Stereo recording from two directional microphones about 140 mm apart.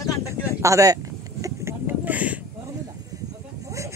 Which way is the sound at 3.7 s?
20° right (ahead or behind).